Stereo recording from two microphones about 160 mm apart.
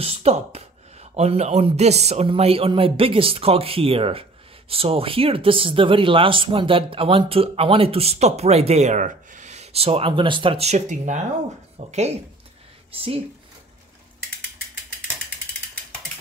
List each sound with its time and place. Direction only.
0.0 s speech: 40° right (ahead or behind)